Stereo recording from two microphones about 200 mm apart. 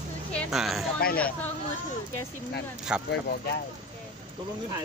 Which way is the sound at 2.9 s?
5° right (ahead or behind).